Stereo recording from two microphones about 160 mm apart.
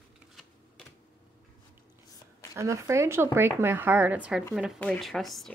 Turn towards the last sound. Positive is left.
turn(degrees=0)  # may be behind; listen again after turning